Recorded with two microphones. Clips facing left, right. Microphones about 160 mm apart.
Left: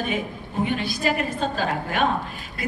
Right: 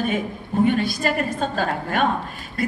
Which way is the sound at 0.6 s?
45° right (ahead or behind).